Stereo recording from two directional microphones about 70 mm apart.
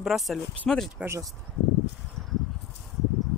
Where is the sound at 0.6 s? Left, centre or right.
Centre.